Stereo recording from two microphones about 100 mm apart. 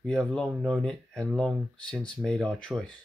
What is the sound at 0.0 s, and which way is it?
Speech, 5° left (ahead or behind).